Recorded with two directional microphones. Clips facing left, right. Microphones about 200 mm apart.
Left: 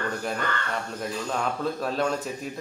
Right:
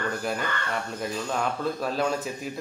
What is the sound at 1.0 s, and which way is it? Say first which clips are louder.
A man's voice: even; centre (ahead or behind).